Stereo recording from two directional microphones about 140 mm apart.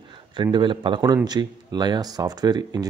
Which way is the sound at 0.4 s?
35° right (ahead or behind).